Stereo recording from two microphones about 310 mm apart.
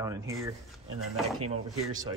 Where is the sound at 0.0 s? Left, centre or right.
Centre.